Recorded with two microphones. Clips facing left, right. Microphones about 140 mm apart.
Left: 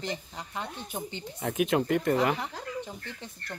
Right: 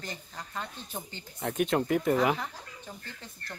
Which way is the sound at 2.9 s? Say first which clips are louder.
Left 3 dB; 20° left (ahead or behind).